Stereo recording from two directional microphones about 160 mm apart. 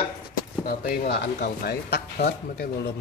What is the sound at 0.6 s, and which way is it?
Speech, 70° left (ahead or behind).